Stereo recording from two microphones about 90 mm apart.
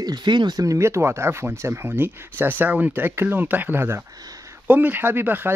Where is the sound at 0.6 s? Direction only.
35° right (ahead or behind).